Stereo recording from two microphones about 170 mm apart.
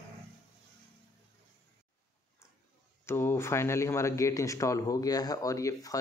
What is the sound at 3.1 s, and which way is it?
Speech, 15° left (ahead or behind).